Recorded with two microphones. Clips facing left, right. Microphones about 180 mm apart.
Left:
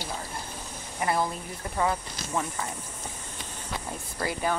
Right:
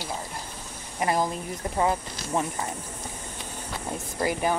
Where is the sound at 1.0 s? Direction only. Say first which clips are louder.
Right 2 dB; 15° right (ahead or behind).